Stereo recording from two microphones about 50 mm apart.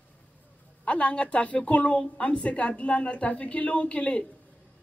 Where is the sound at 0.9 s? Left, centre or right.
Left.